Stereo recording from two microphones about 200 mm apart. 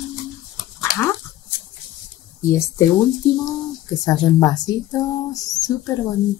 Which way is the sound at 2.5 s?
15° left (ahead or behind).